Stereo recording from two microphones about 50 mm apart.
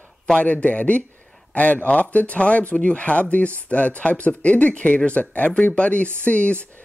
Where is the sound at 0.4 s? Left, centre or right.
Left.